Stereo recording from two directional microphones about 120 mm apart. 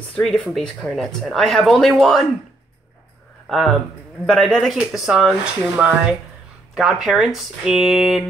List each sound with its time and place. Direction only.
0.1 s speech: 5° left (ahead or behind)
3.4 s speech: centre (ahead or behind)